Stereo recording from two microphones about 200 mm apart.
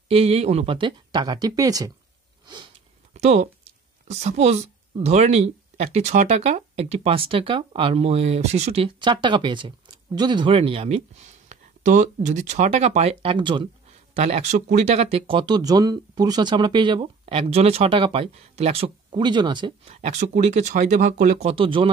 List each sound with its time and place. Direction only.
0.1 s speech: 30° right (ahead or behind)
2.4 s sniff: 20° right (ahead or behind)
3.1 s a sound: 35° right (ahead or behind)
4.1 s speech: 35° right (ahead or behind)
14.1 s speech: 35° right (ahead or behind)
19.8 s speech: 35° right (ahead or behind)